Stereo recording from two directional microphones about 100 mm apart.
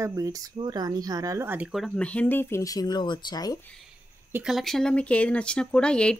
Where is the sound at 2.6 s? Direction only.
35° left (ahead or behind).